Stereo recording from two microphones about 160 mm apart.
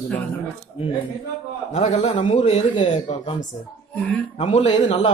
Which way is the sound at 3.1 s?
45° left (ahead or behind).